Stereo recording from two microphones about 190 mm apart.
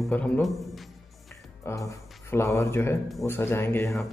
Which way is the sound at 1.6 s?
15° left (ahead or behind).